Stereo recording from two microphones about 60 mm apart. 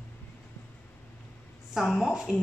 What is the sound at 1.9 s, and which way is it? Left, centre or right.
Speech, centre.